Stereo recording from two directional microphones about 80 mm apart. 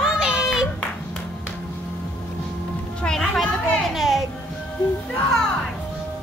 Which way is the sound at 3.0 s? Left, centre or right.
Centre.